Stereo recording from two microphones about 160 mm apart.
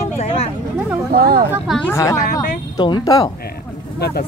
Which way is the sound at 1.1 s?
75° right (ahead or behind).